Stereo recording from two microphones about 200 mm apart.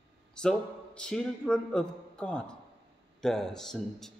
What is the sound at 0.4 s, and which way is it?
A man's voice, 5° left (ahead or behind).